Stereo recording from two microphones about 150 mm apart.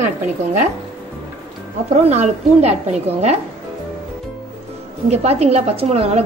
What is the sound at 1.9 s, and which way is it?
Speech, 50° right (ahead or behind).